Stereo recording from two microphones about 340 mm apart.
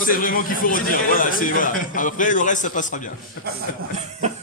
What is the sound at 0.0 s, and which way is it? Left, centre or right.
A man's voice, left.